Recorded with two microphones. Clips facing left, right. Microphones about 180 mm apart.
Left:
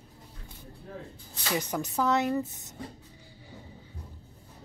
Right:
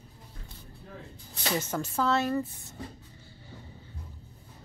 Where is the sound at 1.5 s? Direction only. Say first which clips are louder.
Left 1 dB; 15° left (ahead or behind).